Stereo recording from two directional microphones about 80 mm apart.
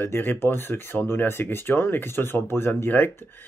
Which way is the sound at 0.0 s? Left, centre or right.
Left.